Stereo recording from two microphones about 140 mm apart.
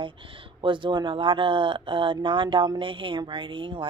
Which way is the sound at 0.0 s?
40° right (ahead or behind).